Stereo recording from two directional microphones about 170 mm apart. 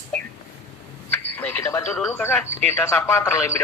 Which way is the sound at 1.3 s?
10° left (ahead or behind).